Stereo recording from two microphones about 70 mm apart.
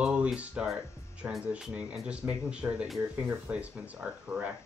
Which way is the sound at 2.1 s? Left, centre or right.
Centre.